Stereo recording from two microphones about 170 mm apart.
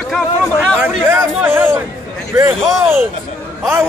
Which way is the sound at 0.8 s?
15° right (ahead or behind).